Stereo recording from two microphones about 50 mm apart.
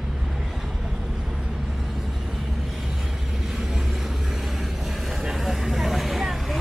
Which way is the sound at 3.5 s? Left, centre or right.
Centre.